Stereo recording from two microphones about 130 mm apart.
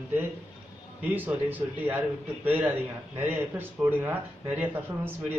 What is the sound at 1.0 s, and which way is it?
A man's voice, 15° right (ahead or behind).